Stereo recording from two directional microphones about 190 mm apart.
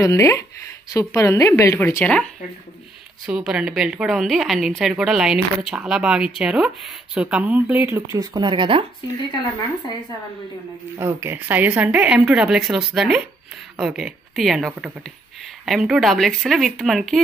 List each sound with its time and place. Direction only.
0.0 s a woman's voice: 15° left (ahead or behind)
3.3 s a woman's voice: 5° right (ahead or behind); by 8.8 s 25° right (ahead or behind)
11.0 s a woman's voice: 15° right (ahead or behind)